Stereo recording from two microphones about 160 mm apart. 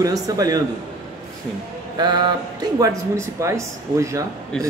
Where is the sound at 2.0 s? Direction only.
25° right (ahead or behind).